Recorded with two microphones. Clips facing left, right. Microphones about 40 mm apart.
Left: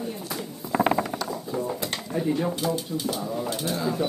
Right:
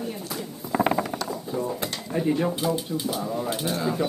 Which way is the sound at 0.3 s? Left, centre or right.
Centre.